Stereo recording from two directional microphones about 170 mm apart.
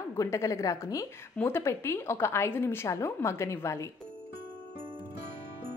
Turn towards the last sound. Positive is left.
turn(degrees=15)  # may be behind; listen again after turning